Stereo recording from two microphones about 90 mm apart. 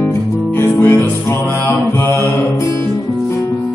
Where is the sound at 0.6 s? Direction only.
20° left (ahead or behind).